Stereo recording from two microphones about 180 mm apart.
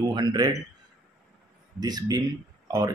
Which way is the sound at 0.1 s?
25° right (ahead or behind).